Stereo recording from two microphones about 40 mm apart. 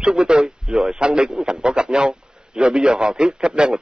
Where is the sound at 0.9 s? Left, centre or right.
Right.